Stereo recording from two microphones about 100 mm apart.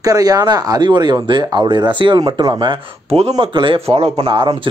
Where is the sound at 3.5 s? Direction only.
55° right (ahead or behind).